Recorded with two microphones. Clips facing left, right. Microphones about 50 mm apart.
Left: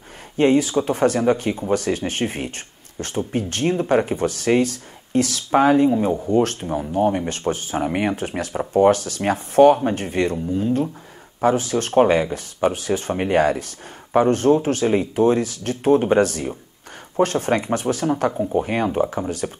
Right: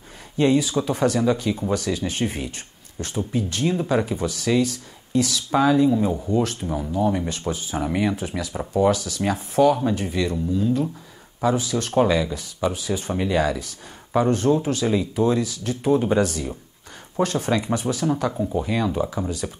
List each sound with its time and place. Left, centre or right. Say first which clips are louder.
0.4 s speech: left 3 dB; left